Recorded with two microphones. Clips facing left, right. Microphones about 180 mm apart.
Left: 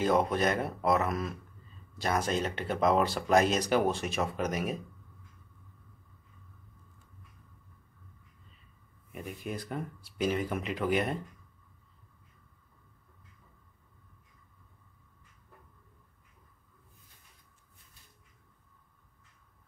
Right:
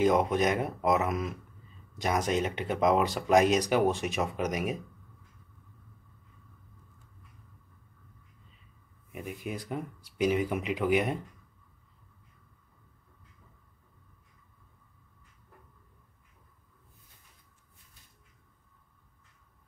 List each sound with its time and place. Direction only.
0.0 s speech: 15° right (ahead or behind)
9.1 s speech: 5° right (ahead or behind)